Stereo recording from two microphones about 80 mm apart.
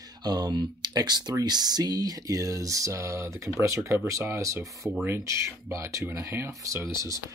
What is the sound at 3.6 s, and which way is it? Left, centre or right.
Speech, right.